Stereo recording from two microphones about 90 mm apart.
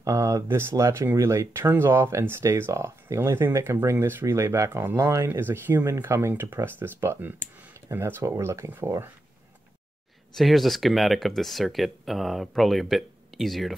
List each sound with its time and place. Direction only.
0.0 s speech: 40° right (ahead or behind)
10.3 s speech: centre (ahead or behind)